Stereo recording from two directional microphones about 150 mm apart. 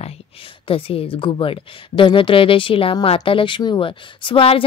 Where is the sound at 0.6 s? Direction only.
40° left (ahead or behind).